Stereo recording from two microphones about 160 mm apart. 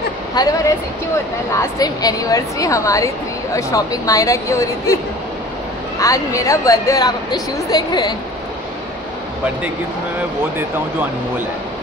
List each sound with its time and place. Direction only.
0.3 s a woman's voice: 25° left (ahead or behind)
5.9 s a woman's voice: 20° left (ahead or behind)